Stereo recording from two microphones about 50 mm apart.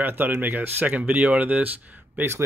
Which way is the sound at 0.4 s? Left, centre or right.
Right.